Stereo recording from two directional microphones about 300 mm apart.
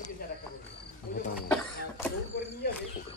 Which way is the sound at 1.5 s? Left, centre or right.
Centre.